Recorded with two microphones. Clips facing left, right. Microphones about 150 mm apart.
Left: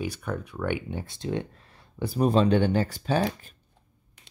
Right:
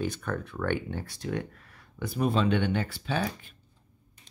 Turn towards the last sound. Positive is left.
turn(degrees=40)  # may be behind; listen again after turning